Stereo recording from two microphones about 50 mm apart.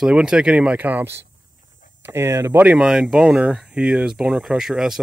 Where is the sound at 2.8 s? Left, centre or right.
Centre.